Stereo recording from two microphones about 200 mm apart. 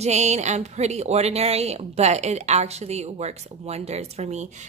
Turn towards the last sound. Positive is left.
turn(degrees=-35)  # may be behind; listen again after turning